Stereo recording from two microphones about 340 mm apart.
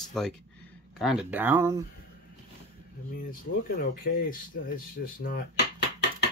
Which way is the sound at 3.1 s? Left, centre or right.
Left.